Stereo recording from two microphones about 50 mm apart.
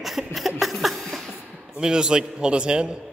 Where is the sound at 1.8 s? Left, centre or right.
Centre.